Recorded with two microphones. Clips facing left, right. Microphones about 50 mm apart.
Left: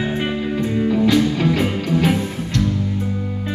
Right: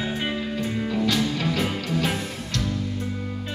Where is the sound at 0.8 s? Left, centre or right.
Centre.